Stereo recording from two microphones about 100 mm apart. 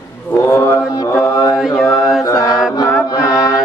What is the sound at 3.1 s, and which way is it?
Music, 35° left (ahead or behind).